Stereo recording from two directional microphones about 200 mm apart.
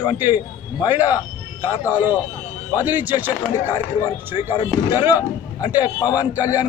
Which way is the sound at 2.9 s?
10° right (ahead or behind).